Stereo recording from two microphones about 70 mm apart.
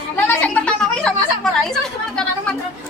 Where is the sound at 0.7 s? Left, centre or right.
Centre.